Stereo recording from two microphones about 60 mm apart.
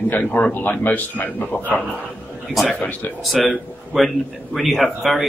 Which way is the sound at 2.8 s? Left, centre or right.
Left.